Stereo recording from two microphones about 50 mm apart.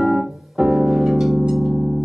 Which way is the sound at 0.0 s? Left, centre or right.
Centre.